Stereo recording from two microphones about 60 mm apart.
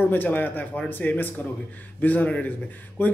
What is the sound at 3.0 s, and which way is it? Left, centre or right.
Mantra, left.